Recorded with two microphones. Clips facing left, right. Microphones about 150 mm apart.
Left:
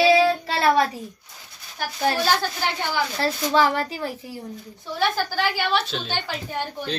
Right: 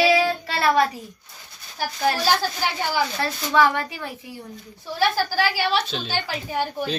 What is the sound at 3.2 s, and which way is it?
A woman's voice, 35° left (ahead or behind).